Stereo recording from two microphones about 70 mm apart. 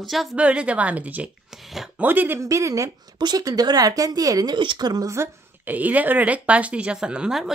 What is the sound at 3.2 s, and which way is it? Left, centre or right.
Speech, right.